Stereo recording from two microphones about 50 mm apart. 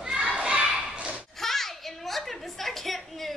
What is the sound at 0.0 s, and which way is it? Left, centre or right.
Children playing, centre.